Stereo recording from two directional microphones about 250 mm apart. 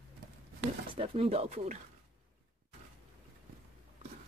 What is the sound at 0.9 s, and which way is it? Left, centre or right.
Speech, right.